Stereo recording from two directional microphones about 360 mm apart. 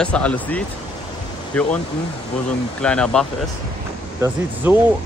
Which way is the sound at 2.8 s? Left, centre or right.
Centre.